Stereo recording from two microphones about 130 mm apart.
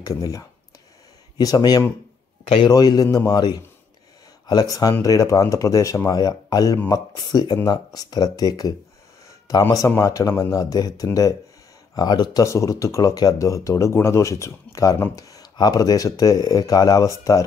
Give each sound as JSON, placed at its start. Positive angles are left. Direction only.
{"t": 0.0, "sound": "speech", "side_deg": 30}
{"t": 2.4, "sound": "a man's voice", "side_deg": 45}
{"t": 2.7, "sound": "speech", "side_deg": 30}